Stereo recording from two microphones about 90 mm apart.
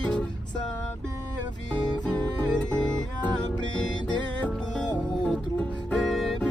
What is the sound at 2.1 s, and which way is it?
Music, 15° left (ahead or behind).